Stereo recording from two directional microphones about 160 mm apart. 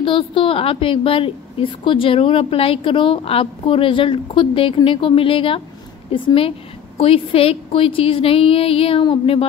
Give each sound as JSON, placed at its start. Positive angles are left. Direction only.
{"t": 0.0, "sound": "a woman's voice", "side_deg": 30}